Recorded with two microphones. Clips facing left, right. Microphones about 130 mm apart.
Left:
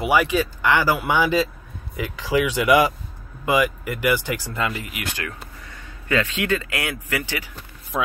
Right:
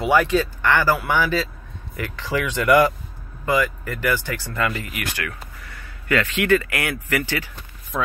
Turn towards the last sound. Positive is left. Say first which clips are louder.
# left 1 dB
turn(degrees=15)  # may be behind; listen again after turning